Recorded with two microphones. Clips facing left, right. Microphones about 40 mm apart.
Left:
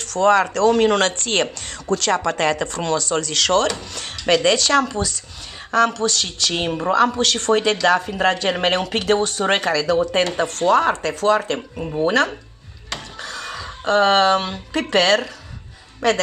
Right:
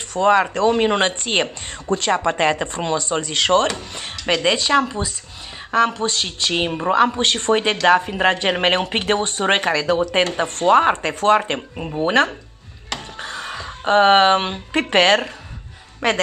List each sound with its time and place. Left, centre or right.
0.1 s speech: right
12.9 s a sound: right
16.0 s speech: right